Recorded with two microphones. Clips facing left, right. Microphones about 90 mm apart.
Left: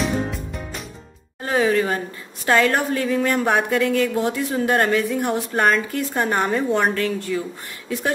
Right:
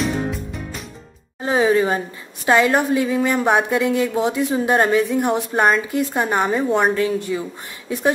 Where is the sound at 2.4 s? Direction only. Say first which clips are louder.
Right 2 dB; 15° right (ahead or behind).